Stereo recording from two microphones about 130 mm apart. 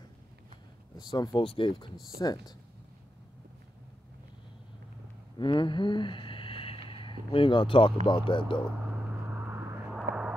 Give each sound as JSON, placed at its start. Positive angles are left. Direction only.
{"t": 0.9, "sound": "speech", "side_deg": 30}
{"t": 1.4, "sound": "speech", "side_deg": 45}
{"t": 5.4, "sound": "speech", "side_deg": 40}
{"t": 8.9, "sound": "vehicle", "side_deg": -15}
{"t": 9.9, "sound": "vehicle", "side_deg": -5}